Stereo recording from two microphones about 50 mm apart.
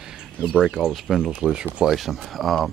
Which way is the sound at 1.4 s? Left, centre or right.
Centre.